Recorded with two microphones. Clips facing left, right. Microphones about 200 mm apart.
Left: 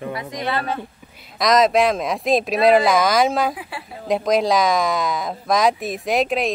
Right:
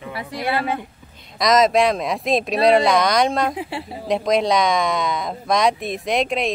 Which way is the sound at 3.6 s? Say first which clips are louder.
Right 6 dB; 25° right (ahead or behind).